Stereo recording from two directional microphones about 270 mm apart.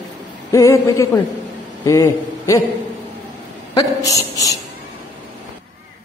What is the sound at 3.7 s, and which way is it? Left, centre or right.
Speech, centre.